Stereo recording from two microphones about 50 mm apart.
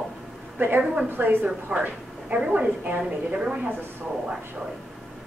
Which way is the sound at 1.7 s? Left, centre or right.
Right.